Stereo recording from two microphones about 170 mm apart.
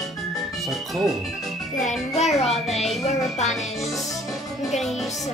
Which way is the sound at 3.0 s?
40° left (ahead or behind).